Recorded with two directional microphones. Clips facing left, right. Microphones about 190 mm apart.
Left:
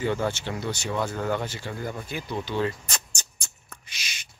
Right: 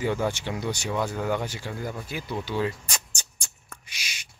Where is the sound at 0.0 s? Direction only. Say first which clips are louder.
Even; 10° right (ahead or behind).